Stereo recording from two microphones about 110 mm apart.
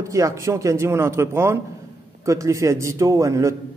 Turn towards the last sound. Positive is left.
turn(degrees=-30)  # may be behind; listen again after turning